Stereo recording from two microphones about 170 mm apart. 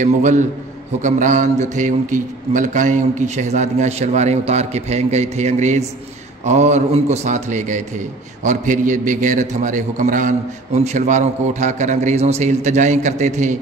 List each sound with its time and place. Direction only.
0.0 s a man's voice: 45° right (ahead or behind)